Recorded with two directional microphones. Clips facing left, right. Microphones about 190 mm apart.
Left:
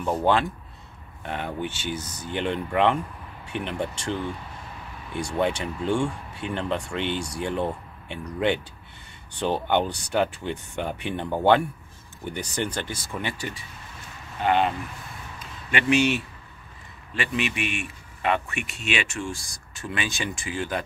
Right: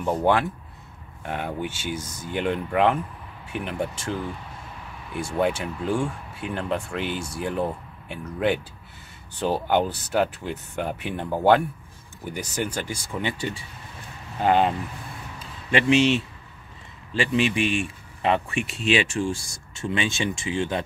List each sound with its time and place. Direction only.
0.2 s speech: 10° right (ahead or behind)
9.4 s speech: 5° right (ahead or behind); by 13.6 s 20° right (ahead or behind)
14.4 s speech: 35° right (ahead or behind)
15.3 s a sound: 30° right (ahead or behind)
17.1 s speech: 30° right (ahead or behind)